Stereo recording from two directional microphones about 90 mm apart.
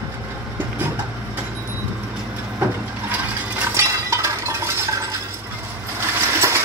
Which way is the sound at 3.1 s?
20° right (ahead or behind).